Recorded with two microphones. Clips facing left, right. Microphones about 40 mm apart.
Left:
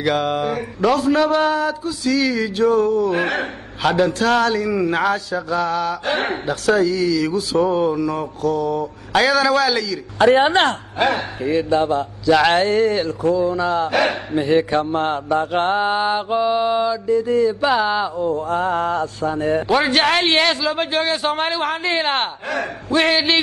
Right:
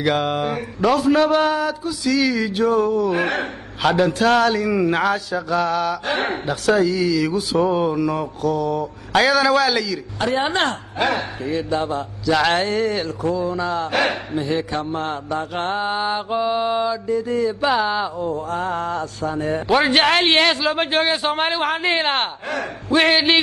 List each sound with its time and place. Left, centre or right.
0.0 s mantra: centre
10.1 s speech: left
11.0 s mantra: centre
14.3 s a man's voice: left
15.2 s mantra: centre
19.9 s speech: centre
20.6 s speech: right
21.1 s mantra: centre
21.5 s speech: centre
21.9 s mantra: centre
22.8 s speech: centre